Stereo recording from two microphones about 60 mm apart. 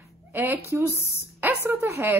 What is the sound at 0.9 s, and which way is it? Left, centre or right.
Speech, left.